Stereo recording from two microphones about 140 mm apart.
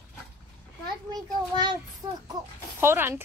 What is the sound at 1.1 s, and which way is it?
A child's voice, 30° right (ahead or behind).